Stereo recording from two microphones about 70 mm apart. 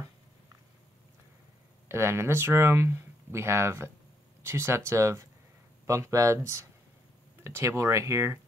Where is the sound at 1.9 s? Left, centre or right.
Right.